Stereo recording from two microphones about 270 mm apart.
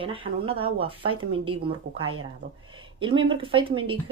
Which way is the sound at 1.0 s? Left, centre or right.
Right.